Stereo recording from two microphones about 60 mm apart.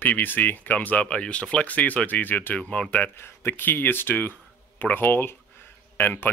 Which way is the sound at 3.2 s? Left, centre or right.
Left.